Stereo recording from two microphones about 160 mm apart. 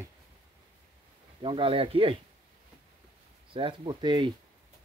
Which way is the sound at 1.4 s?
30° right (ahead or behind).